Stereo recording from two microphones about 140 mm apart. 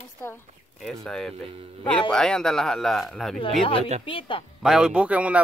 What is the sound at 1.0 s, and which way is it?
Speech, 5° left (ahead or behind).